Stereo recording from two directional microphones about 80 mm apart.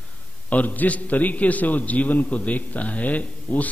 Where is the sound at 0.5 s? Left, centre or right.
Left.